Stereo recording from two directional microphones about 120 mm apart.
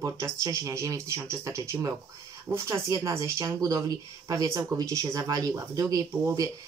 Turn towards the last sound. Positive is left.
turn(degrees=-30)  # may be behind; listen again after turning